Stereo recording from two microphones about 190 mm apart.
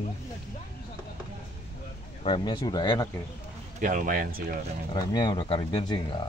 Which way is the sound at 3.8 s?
45° right (ahead or behind).